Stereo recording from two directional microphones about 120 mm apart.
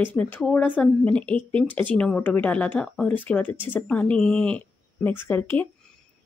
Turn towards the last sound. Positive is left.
turn(degrees=15)  # may be behind; listen again after turning